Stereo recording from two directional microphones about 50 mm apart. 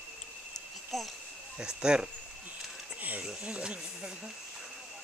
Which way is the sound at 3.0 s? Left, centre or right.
Right.